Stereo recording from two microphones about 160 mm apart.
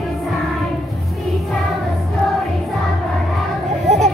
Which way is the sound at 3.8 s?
45° right (ahead or behind).